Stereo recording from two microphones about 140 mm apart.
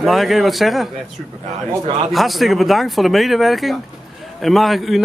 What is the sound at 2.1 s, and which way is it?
Speech, centre (ahead or behind).